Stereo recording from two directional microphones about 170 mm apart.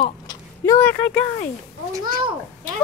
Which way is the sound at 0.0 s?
25° left (ahead or behind).